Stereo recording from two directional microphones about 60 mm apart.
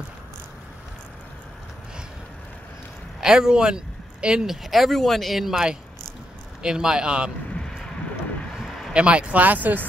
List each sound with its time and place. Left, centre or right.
3.2 s speech: centre
6.6 s speech: centre
8.5 s a sound: centre
8.9 s speech: centre